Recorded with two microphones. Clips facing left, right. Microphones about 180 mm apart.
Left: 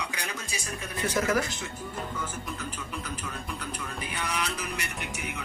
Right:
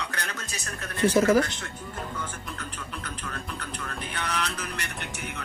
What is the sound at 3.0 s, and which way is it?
Music, 10° left (ahead or behind).